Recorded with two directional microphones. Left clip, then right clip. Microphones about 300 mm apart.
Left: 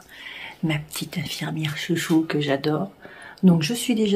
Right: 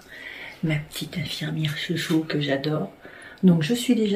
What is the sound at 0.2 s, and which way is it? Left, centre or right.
Speech, centre.